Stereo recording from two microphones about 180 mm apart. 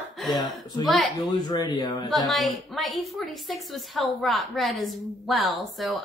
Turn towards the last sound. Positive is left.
turn(degrees=0)  # may be behind; listen again after turning